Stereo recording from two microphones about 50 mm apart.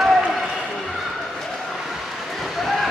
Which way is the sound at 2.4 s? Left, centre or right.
Centre.